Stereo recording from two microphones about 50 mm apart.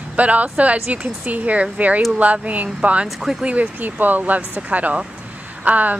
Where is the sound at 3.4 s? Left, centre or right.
Right.